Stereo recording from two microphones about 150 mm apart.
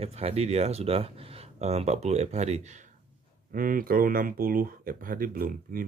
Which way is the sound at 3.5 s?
70° right (ahead or behind).